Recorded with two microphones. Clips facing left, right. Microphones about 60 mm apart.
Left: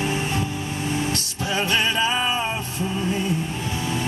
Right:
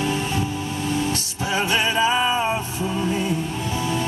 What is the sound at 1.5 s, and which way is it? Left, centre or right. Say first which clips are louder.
Music: right 1 dB; centre.